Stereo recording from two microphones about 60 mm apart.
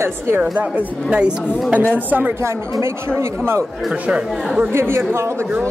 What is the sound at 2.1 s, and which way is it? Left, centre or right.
Speech, right.